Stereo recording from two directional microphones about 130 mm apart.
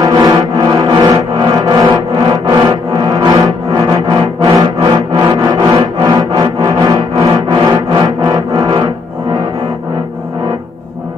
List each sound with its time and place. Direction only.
0.0 s music: 30° right (ahead or behind)